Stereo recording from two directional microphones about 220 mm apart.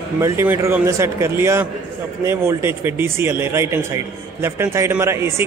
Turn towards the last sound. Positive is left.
turn(degrees=-10)  # may be behind; listen again after turning